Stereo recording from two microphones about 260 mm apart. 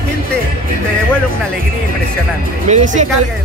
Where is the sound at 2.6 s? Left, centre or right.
Right.